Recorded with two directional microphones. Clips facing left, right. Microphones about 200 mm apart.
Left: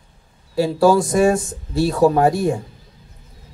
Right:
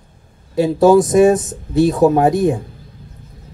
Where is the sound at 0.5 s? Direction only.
20° right (ahead or behind).